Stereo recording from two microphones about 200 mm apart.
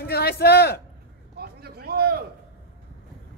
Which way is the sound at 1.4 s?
50° right (ahead or behind).